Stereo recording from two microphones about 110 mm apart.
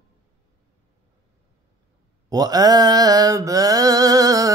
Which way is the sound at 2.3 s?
35° right (ahead or behind).